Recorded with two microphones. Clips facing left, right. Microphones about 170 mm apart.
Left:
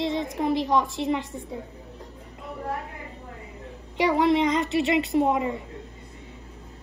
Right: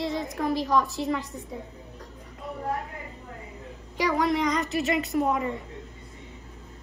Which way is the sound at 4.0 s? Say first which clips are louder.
Left 4 dB; 25° left (ahead or behind).